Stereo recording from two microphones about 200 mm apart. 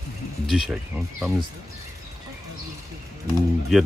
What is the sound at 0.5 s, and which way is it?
Speech, centre (ahead or behind).